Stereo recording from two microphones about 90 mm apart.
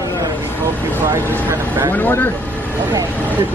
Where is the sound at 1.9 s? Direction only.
20° left (ahead or behind).